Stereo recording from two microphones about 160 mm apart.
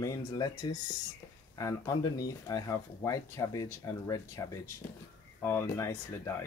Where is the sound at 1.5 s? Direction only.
20° left (ahead or behind).